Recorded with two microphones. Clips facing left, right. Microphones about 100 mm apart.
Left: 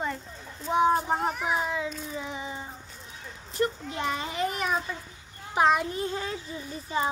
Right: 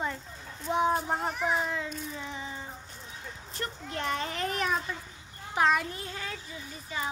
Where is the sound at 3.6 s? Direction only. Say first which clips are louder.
Left 8 dB; 10° left (ahead or behind).